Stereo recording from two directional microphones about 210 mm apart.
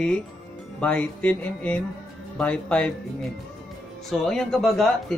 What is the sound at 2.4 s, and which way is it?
Speech, 5° left (ahead or behind).